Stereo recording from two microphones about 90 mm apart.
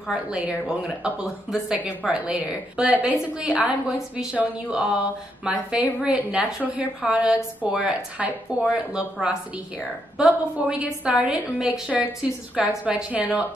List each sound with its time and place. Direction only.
0.1 s a woman's voice: 10° right (ahead or behind)